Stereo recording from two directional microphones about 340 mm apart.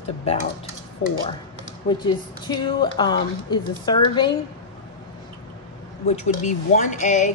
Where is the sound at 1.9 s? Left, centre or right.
Centre.